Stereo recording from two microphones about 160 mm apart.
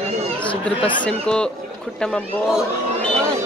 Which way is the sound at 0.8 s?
30° left (ahead or behind).